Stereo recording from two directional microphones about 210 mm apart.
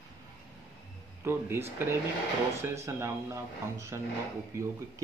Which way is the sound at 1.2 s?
10° right (ahead or behind).